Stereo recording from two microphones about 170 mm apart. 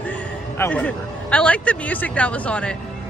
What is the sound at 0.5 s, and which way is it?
A man's voice, 10° left (ahead or behind).